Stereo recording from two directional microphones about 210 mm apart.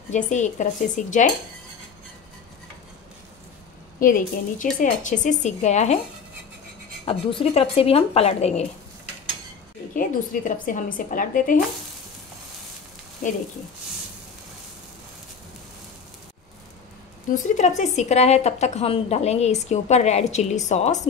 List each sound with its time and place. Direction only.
0.1 s speech: 35° left (ahead or behind)
4.0 s speech: 40° left (ahead or behind)
7.1 s speech: 25° left (ahead or behind)
9.9 s speech: 40° left (ahead or behind)
13.2 s speech: 40° left (ahead or behind)
17.3 s speech: 35° left (ahead or behind)